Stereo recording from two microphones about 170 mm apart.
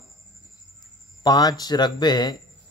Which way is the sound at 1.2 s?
25° left (ahead or behind).